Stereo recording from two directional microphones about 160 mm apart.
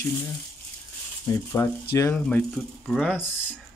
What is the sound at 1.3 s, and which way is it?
Sizzle, 20° left (ahead or behind).